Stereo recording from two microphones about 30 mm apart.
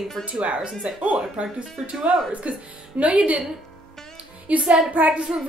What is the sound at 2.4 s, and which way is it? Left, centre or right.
Speech, right.